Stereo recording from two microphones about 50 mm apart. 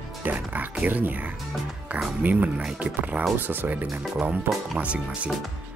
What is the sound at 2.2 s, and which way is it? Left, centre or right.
Speech, right.